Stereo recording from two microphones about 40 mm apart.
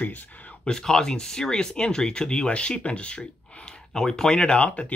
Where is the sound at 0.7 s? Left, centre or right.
Centre.